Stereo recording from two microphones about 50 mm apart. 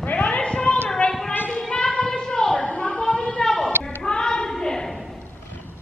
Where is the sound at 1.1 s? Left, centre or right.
Centre.